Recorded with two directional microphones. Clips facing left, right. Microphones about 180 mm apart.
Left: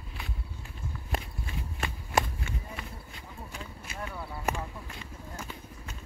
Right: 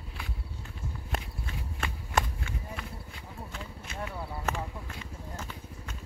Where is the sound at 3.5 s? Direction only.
10° left (ahead or behind).